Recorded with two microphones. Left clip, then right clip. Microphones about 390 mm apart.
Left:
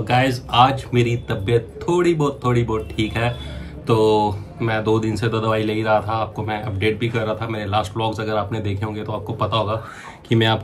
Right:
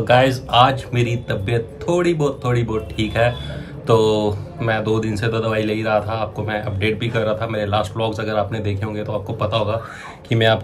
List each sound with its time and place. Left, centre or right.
0.0 s speech: centre